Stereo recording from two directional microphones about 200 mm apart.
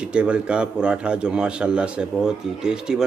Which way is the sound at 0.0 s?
5° right (ahead or behind).